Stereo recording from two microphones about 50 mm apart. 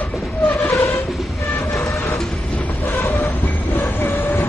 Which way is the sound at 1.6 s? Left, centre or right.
Left.